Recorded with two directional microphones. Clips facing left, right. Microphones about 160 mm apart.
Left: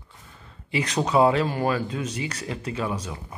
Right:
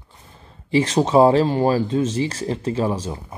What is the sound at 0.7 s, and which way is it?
A man's voice, 25° right (ahead or behind).